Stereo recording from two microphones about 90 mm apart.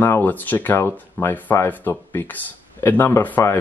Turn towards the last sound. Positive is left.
turn(degrees=30)  # may be behind; listen again after turning